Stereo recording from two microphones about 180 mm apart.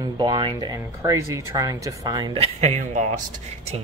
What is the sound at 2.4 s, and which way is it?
Speech, 35° right (ahead or behind).